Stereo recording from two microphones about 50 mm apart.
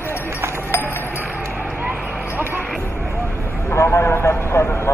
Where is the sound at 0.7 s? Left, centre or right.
Left.